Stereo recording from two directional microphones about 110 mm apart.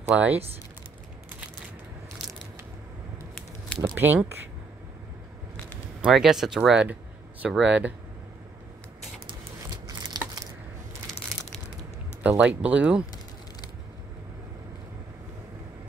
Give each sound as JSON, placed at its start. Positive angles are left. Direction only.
{"t": 0.0, "sound": "speech", "side_deg": -10}
{"t": 3.8, "sound": "speech", "side_deg": -20}
{"t": 6.0, "sound": "speech", "side_deg": -5}
{"t": 9.8, "sound": "a sound", "side_deg": -35}
{"t": 12.2, "sound": "speech", "side_deg": -15}